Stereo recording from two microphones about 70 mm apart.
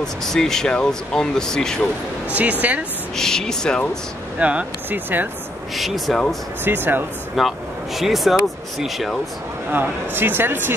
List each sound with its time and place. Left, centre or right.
0.0 s speech: centre
2.6 s speech: right
3.2 s speech: centre
4.4 s speech: centre
5.8 s speech: centre
6.6 s speech: right
7.3 s speech: centre
9.7 s speech: right